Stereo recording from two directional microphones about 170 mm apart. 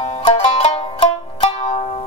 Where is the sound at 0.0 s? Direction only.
35° left (ahead or behind).